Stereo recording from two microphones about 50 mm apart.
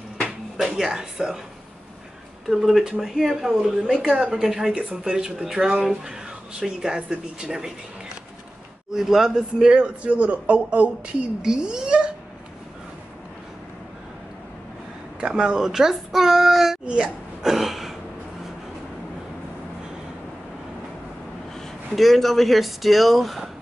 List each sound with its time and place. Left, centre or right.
0.6 s a child's voice: centre
2.4 s a child's voice: centre
4.0 s speech: centre
4.4 s a child's voice: centre
6.6 s a child's voice: centre
8.9 s a child's voice: centre
10.0 s speech: right
11.4 s speech: centre
15.1 s a child's voice: centre
16.8 s hiccup: centre
21.9 s speech: centre